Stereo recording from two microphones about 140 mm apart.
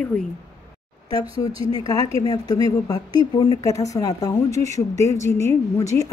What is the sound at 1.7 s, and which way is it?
A woman's voice, 25° left (ahead or behind).